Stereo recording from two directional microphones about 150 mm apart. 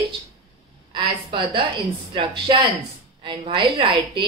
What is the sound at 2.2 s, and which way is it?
Speech, 30° right (ahead or behind).